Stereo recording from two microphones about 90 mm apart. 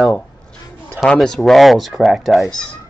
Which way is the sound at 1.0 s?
5° left (ahead or behind).